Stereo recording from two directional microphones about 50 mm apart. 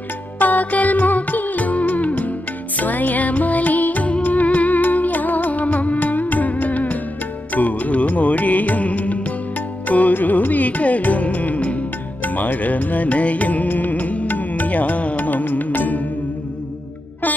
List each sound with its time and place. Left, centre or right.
0.4 s music: left